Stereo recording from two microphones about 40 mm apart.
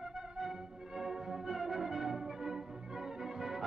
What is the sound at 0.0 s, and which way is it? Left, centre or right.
Music, centre.